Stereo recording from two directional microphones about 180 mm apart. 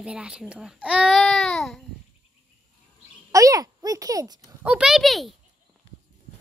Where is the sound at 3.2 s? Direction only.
20° right (ahead or behind).